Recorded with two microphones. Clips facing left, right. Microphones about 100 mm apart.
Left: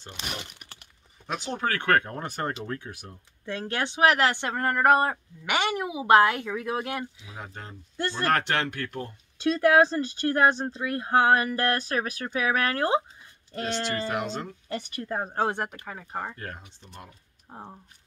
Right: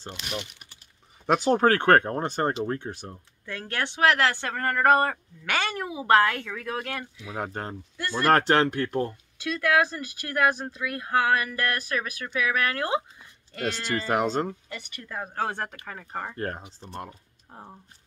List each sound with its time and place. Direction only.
1.2 s speech: 45° right (ahead or behind); by 3.2 s 30° right (ahead or behind)
3.4 s speech: 20° left (ahead or behind)
7.3 s speech: 55° right (ahead or behind)
8.3 s speech: 35° right (ahead or behind)
9.4 s speech: 30° left (ahead or behind)
13.9 s speech: 40° right (ahead or behind)
14.7 s speech: 40° left (ahead or behind)
15.8 s speech: 10° left (ahead or behind)
16.3 s speech: 40° right (ahead or behind)
17.5 s speech: 15° left (ahead or behind)